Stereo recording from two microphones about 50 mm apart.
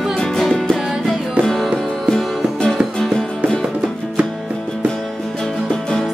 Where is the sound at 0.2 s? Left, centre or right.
Centre.